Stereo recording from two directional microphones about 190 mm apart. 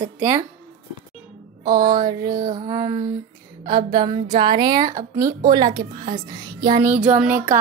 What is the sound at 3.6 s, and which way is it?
A woman's voice, 25° right (ahead or behind).